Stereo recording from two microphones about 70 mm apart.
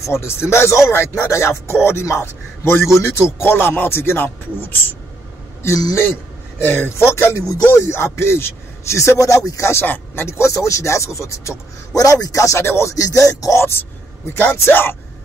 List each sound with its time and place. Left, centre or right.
0.1 s a man's voice: left
6.6 s a man's voice: left
9.7 s a man's voice: left